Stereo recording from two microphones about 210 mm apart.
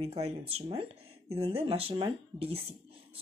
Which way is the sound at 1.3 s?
25° right (ahead or behind).